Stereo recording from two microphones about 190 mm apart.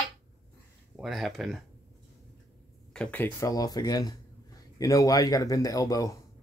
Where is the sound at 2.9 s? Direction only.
5° left (ahead or behind).